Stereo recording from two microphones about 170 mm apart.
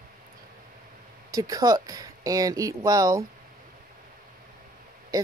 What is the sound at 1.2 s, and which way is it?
A woman's voice, 20° right (ahead or behind).